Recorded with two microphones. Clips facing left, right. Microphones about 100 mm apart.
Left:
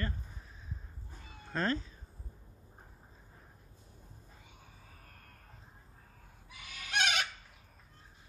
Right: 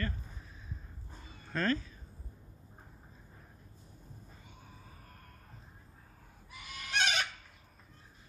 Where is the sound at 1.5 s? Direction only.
25° left (ahead or behind).